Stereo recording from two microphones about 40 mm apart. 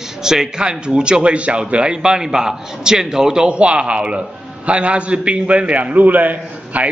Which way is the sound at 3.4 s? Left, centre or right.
Right.